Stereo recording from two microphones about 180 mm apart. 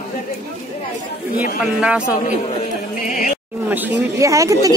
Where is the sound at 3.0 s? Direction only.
50° left (ahead or behind).